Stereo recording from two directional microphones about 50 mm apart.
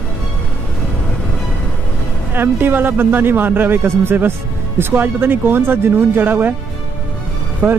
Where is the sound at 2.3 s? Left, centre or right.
Right.